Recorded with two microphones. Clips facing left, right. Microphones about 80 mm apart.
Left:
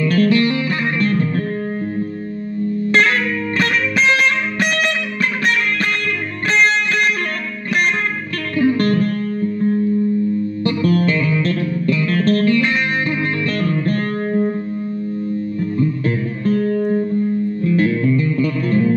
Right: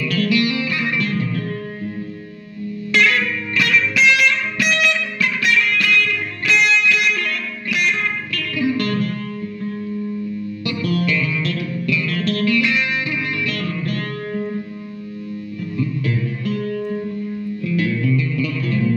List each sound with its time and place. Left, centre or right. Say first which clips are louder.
0.0 s music: left 4 dB; left
2.9 s music: even; left
8.5 s music: left 5 dB; left
10.6 s music: left 4 dB; left
16.4 s music: left 8 dB; left